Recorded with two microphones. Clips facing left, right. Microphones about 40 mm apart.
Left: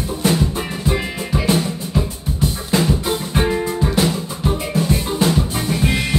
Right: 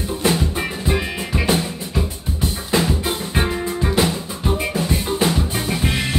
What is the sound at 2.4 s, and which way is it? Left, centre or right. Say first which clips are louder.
Drum: left 1 dB; centre.